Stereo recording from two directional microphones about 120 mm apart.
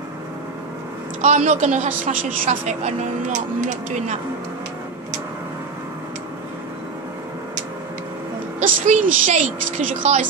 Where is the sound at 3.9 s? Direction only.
90° right.